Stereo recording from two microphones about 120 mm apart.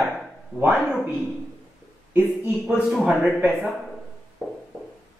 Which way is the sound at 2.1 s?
15° right (ahead or behind).